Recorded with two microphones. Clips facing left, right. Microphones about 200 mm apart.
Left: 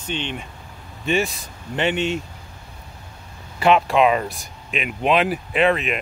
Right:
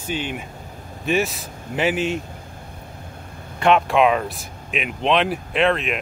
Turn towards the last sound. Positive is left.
turn(degrees=0)  # may be behind; listen again after turning